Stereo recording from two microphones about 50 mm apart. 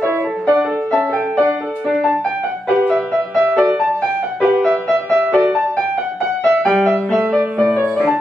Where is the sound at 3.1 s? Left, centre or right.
Right.